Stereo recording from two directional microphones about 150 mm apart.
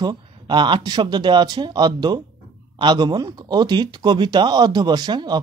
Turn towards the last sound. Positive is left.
turn(degrees=-30)  # may be behind; listen again after turning